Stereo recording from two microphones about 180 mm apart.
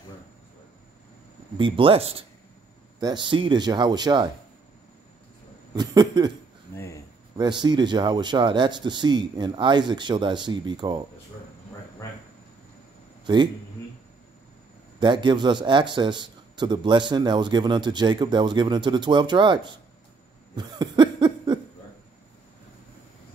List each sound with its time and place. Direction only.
1.6 s a man's voice: 30° right (ahead or behind)
5.8 s a man's voice: 25° right (ahead or behind)
6.7 s cricket: 15° left (ahead or behind)
7.3 s a man's voice: 25° right (ahead or behind)
13.2 s speech: 25° right (ahead or behind)
15.0 s a man's voice: 25° right (ahead or behind)
20.5 s cough: 25° right (ahead or behind)